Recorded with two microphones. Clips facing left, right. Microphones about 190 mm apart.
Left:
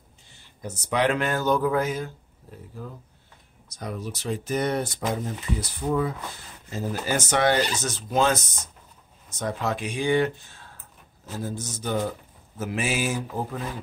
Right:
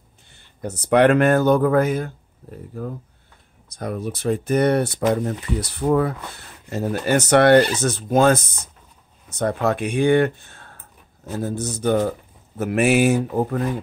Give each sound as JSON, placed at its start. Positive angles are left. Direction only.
{"t": 0.3, "sound": "speech", "side_deg": -60}